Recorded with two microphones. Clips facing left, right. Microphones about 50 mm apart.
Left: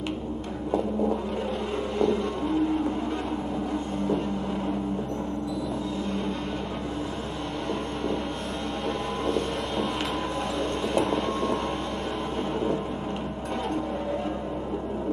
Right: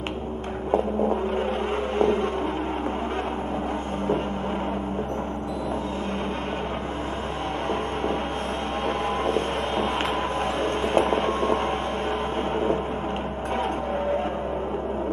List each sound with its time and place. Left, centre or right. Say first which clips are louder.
9.2 s vehicle: right 3 dB; right
10.6 s train: right 4 dB; right